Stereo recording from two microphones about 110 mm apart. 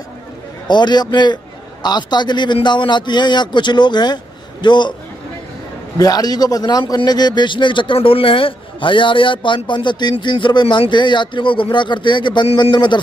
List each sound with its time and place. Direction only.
0.7 s a man's voice: 40° left (ahead or behind)
5.9 s a man's voice: 35° left (ahead or behind)